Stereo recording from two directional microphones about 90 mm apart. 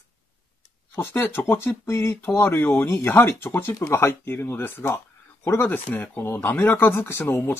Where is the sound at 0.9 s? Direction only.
25° left (ahead or behind).